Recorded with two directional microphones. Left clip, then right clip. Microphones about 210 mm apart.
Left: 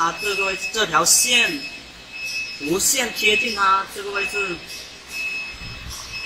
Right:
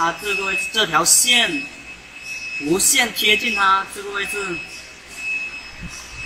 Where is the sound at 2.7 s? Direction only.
40° right (ahead or behind).